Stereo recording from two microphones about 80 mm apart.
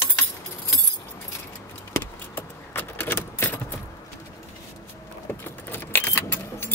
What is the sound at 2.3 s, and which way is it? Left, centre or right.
Keys jangling, left.